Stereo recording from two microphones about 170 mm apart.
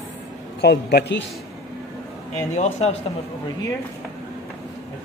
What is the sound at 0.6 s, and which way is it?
Speech, 70° left (ahead or behind).